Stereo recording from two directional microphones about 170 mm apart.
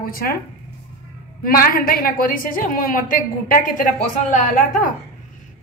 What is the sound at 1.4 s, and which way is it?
A woman's voice, 60° left (ahead or behind).